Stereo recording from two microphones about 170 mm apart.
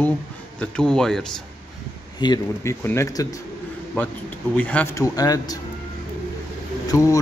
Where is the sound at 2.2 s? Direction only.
20° left (ahead or behind).